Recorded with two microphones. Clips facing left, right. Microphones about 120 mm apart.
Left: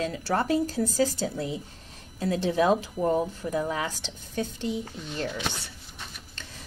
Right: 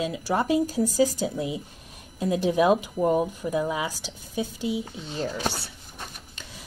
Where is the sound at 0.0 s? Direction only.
15° right (ahead or behind).